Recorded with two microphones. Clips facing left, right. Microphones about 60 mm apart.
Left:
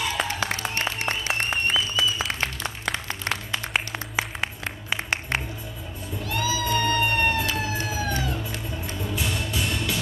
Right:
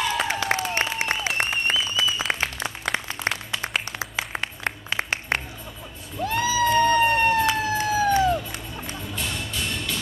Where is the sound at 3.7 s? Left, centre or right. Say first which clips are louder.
Left 3 dB; centre.